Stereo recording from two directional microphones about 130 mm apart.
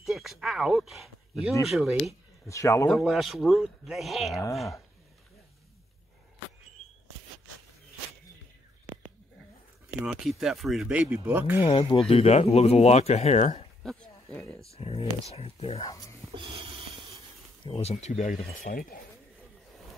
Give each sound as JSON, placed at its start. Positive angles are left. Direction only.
{"t": 0.0, "sound": "speech", "side_deg": 0}
{"t": 2.4, "sound": "speech", "side_deg": 25}
{"t": 2.9, "sound": "speech", "side_deg": 0}
{"t": 10.0, "sound": "speech", "side_deg": -5}
{"t": 11.6, "sound": "speech", "side_deg": 40}
{"t": 12.1, "sound": "speech", "side_deg": 50}
{"t": 13.8, "sound": "a sound", "side_deg": 10}
{"t": 14.8, "sound": "speech", "side_deg": 45}
{"t": 15.8, "sound": "speech", "side_deg": 25}
{"t": 16.3, "sound": "snort", "side_deg": -40}
{"t": 17.6, "sound": "speech", "side_deg": 50}